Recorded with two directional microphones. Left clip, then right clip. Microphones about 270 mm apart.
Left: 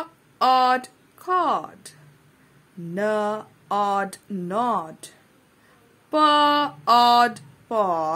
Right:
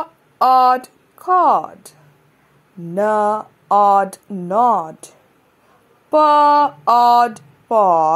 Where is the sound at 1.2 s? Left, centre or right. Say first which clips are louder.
Right 9 dB; centre.